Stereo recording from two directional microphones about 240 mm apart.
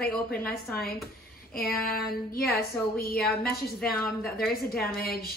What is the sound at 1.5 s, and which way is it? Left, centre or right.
Speech, left.